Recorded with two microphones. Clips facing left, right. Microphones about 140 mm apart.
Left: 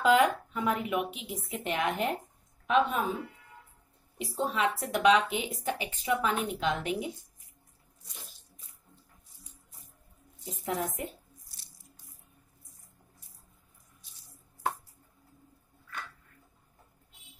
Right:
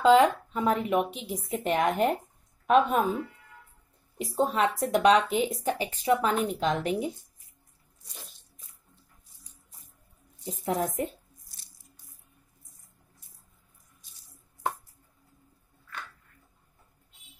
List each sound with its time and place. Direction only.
0.0 s a woman's voice: 30° right (ahead or behind); by 3.1 s 45° right (ahead or behind)
4.2 s a woman's voice: 40° right (ahead or behind)
10.4 s a woman's voice: 35° right (ahead or behind)